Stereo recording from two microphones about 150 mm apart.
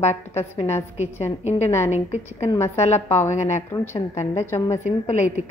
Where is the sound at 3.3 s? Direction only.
50° left (ahead or behind).